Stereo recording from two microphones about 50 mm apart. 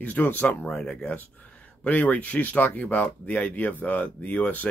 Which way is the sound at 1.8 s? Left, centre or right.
Left.